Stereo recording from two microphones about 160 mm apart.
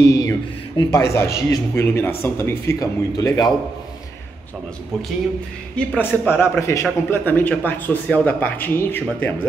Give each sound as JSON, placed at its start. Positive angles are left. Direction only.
{"t": 0.0, "sound": "a sound", "side_deg": 20}
{"t": 1.1, "sound": "a man's voice", "side_deg": 20}
{"t": 5.8, "sound": "a man's voice", "side_deg": 10}